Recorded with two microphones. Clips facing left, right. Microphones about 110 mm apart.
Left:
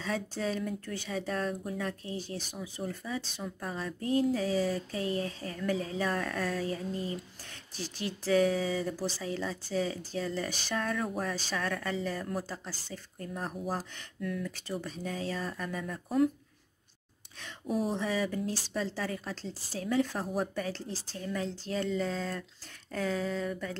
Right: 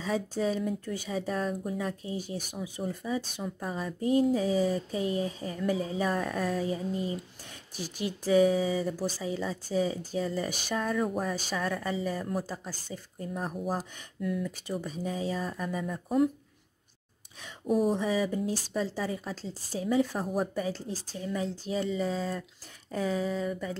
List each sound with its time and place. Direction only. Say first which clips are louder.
0.0 s speech: right 4 dB; 10° right (ahead or behind)
17.6 s speech: right 5 dB; 5° right (ahead or behind)